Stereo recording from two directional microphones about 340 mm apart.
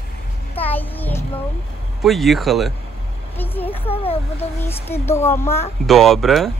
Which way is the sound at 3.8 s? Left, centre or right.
Centre.